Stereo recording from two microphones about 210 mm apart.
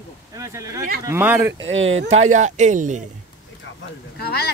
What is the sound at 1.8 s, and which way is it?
Speech, 70° right (ahead or behind).